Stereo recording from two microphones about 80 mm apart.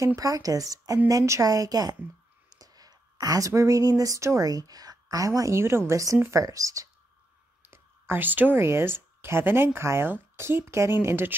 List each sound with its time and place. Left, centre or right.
0.0 s speech: right
7.7 s speech: right